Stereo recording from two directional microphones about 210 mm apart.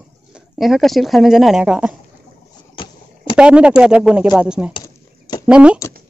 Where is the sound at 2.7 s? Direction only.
25° left (ahead or behind).